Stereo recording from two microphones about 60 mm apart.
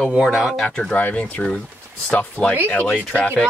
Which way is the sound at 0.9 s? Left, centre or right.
Left.